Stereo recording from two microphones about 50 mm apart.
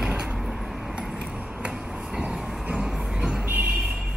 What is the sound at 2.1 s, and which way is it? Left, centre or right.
Train, centre.